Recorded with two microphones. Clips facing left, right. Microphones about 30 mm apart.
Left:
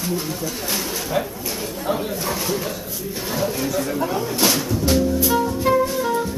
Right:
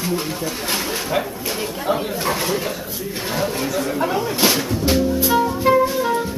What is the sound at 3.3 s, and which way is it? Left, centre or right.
Speech, centre.